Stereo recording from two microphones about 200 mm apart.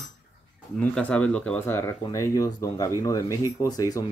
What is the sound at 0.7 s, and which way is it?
Speech, 5° left (ahead or behind).